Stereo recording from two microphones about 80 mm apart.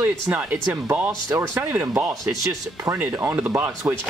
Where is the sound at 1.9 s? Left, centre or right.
Right.